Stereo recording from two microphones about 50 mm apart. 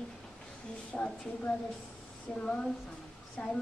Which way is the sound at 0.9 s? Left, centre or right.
Centre.